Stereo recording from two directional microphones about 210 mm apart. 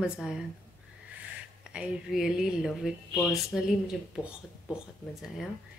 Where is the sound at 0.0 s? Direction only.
5° right (ahead or behind).